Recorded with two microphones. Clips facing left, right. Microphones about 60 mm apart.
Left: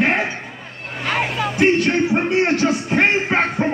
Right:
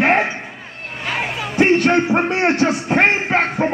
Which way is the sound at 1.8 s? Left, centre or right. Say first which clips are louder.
Right 2 dB; right.